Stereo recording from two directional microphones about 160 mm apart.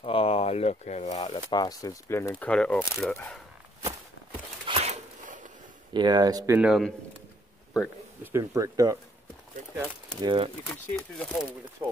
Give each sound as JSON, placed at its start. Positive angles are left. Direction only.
{"t": 0.0, "sound": "speech", "side_deg": 35}
{"t": 1.2, "sound": "speech", "side_deg": 25}
{"t": 4.6, "sound": "a sound", "side_deg": -40}
{"t": 5.9, "sound": "speech", "side_deg": -25}
{"t": 6.5, "sound": "speech", "side_deg": -5}
{"t": 8.2, "sound": "speech", "side_deg": -15}
{"t": 10.2, "sound": "speech", "side_deg": -30}
{"t": 10.7, "sound": "speech", "side_deg": 5}